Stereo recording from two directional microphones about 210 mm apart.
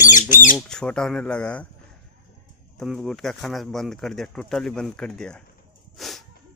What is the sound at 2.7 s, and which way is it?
Speech, centre (ahead or behind).